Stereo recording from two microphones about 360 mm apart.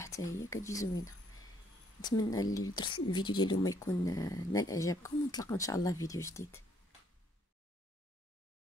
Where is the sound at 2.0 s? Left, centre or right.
Centre.